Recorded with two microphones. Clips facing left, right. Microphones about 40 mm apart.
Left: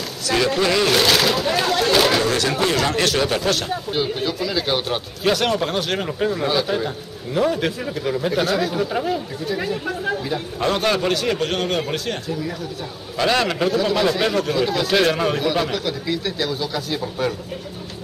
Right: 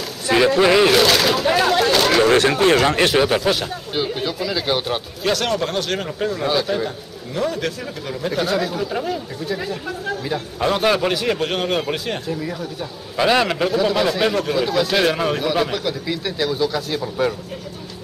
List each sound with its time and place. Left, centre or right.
0.6 s speech: centre
0.9 s a man's voice: centre
2.2 s speech: right
3.3 s a man's voice: centre
10.3 s a man's voice: centre